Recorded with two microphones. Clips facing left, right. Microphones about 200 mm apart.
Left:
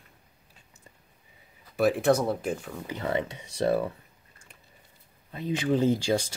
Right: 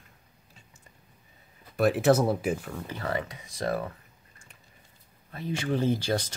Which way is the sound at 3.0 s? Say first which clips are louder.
Left 4 dB; 25° left (ahead or behind).